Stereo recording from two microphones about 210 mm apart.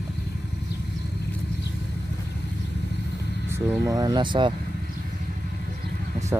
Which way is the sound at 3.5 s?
15° right (ahead or behind).